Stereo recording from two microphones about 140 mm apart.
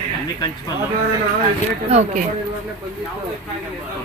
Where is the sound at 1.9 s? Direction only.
55° right (ahead or behind).